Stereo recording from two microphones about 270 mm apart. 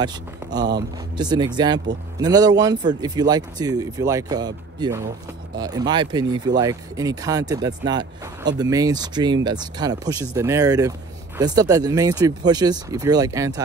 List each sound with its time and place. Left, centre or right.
0.0 s speech: centre